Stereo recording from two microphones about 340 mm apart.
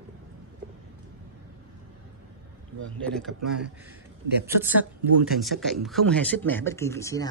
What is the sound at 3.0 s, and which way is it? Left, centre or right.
Speech, centre.